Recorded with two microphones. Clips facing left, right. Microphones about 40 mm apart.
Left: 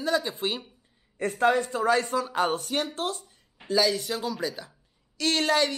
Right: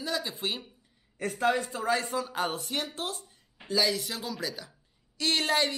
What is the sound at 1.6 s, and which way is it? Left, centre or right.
Speech, left.